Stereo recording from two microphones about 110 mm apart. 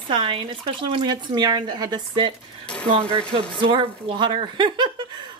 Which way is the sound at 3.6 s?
50° right (ahead or behind).